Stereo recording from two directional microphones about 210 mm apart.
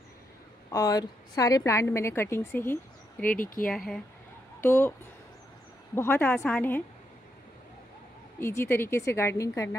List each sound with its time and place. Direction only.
0.7 s a woman's voice: 15° left (ahead or behind)
3.3 s speech: 40° left (ahead or behind)
3.7 s speech: centre (ahead or behind)
4.6 s speech: 10° left (ahead or behind)
5.9 s a woman's voice: 10° left (ahead or behind)
8.4 s a woman's voice: 10° left (ahead or behind)